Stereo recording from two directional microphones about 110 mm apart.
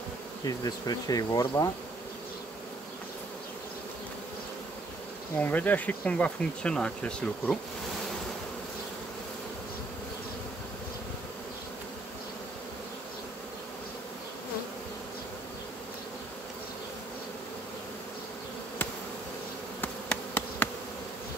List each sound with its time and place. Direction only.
0.5 s speech: 35° left (ahead or behind)
5.4 s speech: 15° left (ahead or behind)
19.8 s insect: 15° left (ahead or behind)